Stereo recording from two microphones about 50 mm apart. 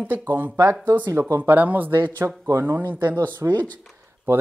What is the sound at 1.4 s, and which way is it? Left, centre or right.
Speech, right.